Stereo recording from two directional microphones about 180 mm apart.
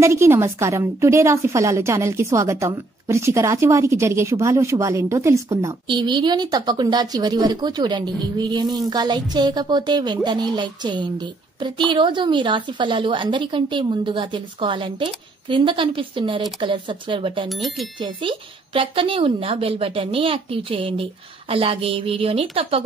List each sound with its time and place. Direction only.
0.0 s a woman's voice: 15° right (ahead or behind)
17.5 s speech: centre (ahead or behind)
18.0 s a woman's voice: 30° right (ahead or behind)